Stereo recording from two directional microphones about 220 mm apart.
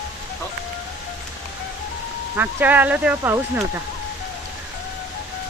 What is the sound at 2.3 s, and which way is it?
Speech, 10° right (ahead or behind).